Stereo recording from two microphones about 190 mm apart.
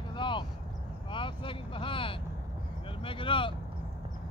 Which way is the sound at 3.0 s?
25° left (ahead or behind).